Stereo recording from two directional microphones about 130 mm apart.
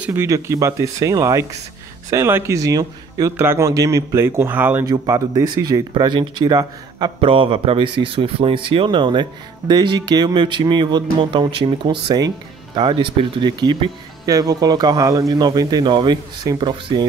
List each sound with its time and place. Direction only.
0.0 s speech: 20° right (ahead or behind)
4.8 s speech: 30° right (ahead or behind)
7.2 s speech: 45° right (ahead or behind)